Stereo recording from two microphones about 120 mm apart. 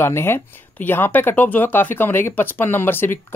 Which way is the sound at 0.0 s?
20° left (ahead or behind).